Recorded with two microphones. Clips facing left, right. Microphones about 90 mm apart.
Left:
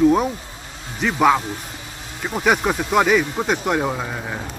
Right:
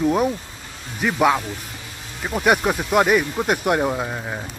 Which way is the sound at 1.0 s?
5° right (ahead or behind).